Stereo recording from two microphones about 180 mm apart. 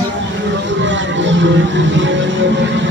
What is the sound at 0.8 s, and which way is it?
Music, 90° right.